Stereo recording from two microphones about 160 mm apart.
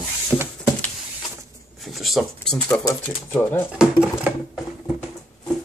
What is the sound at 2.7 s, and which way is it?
Speech, 20° left (ahead or behind).